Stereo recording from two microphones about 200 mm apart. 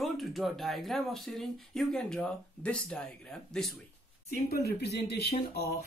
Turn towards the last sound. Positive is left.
turn(degrees=55)  # may be behind; listen again after turning